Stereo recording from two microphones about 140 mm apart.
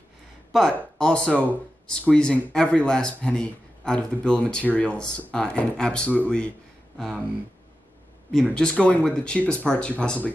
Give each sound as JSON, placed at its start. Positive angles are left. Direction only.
{"t": 0.5, "sound": "speech", "side_deg": 5}
{"t": 8.5, "sound": "speech", "side_deg": 5}